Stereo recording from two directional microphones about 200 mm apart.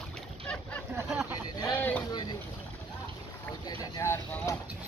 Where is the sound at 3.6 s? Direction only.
15° left (ahead or behind).